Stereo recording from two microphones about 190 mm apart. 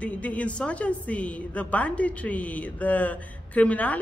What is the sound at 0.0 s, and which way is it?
A man's voice, 5° left (ahead or behind).